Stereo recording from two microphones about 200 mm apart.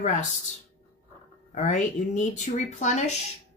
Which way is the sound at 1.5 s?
40° left (ahead or behind).